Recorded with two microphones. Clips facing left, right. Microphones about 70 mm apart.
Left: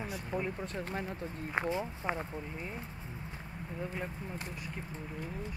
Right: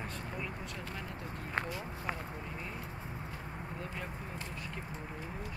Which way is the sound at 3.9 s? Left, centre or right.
Centre.